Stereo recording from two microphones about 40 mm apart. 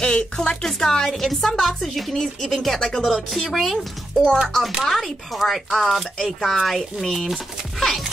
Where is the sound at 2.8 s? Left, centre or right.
Centre.